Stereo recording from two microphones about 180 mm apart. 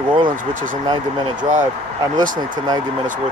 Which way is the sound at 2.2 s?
50° right (ahead or behind).